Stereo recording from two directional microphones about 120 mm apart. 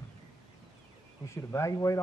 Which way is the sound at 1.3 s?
25° left (ahead or behind).